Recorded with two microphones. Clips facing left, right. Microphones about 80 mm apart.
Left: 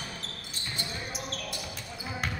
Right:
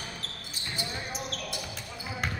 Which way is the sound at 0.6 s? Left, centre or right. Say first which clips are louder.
Right 1 dB; centre.